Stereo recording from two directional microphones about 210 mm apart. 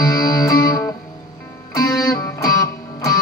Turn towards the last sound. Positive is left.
turn(degrees=20)  # may be behind; listen again after turning